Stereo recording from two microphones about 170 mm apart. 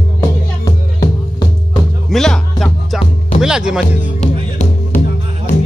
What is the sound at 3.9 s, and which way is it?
Music, 45° left (ahead or behind).